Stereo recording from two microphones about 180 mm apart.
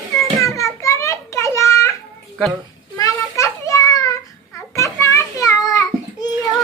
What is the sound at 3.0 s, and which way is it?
Children playing, 15° left (ahead or behind).